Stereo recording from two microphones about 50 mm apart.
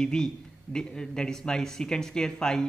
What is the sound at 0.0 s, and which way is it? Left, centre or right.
Speech, centre.